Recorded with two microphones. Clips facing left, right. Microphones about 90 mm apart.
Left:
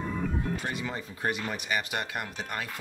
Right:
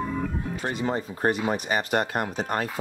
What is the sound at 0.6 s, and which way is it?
Speech, 35° right (ahead or behind).